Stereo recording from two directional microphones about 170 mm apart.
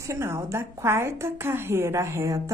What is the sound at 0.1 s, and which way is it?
A woman's voice, 15° right (ahead or behind).